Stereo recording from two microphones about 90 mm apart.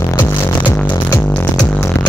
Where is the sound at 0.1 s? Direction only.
25° left (ahead or behind).